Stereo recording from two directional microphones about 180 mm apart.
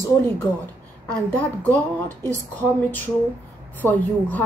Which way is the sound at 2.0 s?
15° right (ahead or behind).